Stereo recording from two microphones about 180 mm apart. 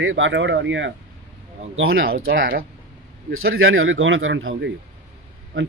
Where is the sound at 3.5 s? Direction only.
90° right.